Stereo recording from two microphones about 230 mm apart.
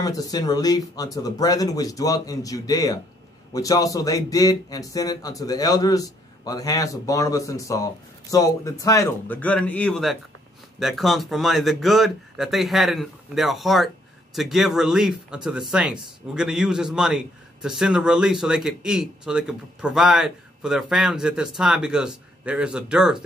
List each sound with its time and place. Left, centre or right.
0.0 s speech: centre